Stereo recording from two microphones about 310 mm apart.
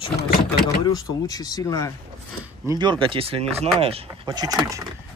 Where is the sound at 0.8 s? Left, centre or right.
Centre.